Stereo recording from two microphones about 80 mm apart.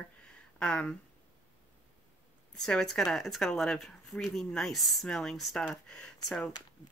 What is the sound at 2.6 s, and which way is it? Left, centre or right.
Speech, centre.